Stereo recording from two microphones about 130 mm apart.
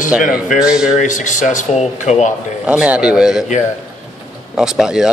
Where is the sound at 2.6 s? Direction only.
10° right (ahead or behind).